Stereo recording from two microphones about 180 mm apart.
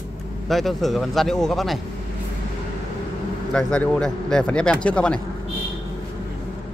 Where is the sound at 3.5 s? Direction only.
5° left (ahead or behind).